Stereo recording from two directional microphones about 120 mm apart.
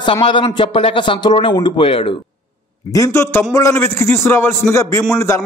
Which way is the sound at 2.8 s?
30° left (ahead or behind).